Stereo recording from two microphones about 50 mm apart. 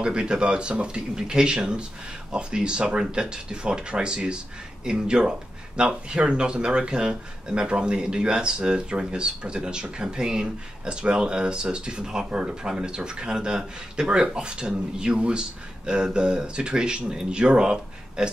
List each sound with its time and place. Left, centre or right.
0.0 s speech: centre